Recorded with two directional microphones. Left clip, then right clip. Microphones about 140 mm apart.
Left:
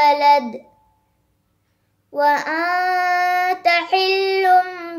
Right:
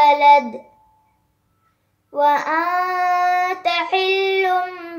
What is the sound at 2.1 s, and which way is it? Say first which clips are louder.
Child singing: right 1 dB; 15° left (ahead or behind).